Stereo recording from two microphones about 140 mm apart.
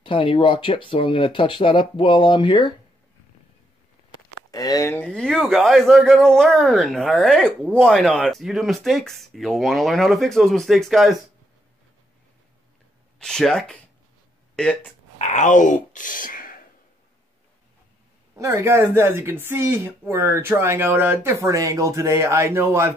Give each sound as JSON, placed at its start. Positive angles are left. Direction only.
{"t": 0.0, "sound": "speech", "side_deg": 40}
{"t": 4.5, "sound": "speech", "side_deg": 25}
{"t": 5.0, "sound": "speech", "side_deg": 5}
{"t": 13.2, "sound": "speech", "side_deg": 5}
{"t": 15.1, "sound": "speech", "side_deg": 60}
{"t": 18.4, "sound": "speech", "side_deg": -20}